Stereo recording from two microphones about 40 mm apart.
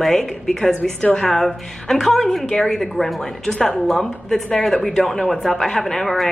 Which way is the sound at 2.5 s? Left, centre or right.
Centre.